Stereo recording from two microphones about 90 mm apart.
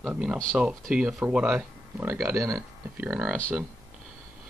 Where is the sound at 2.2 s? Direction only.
35° right (ahead or behind).